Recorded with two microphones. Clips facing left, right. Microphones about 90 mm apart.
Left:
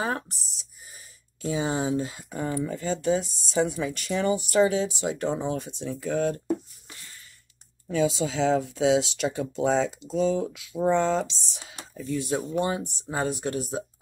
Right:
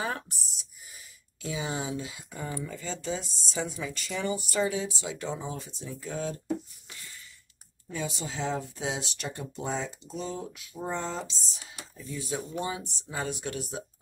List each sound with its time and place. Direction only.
0.0 s speech: 40° left (ahead or behind); by 5.0 s 70° left (ahead or behind)
5.0 s speech: 50° left (ahead or behind)
7.9 s speech: 90° left; by 11.7 s 70° left (ahead or behind)
12.1 s speech: 55° left (ahead or behind); by 13.8 s 40° left (ahead or behind)